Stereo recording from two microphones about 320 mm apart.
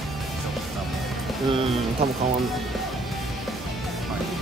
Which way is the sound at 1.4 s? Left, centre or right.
Centre.